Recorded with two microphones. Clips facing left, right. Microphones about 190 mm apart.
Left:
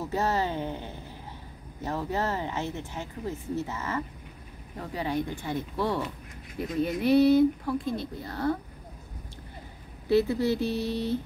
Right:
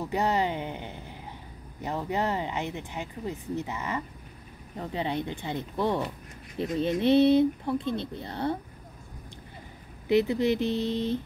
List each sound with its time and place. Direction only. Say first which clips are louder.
0.0 s speech: right 1 dB; 15° right (ahead or behind)
10.0 s speech: even; 15° right (ahead or behind)